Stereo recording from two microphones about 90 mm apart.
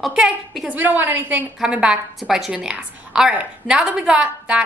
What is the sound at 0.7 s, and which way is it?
A woman's voice, 20° right (ahead or behind).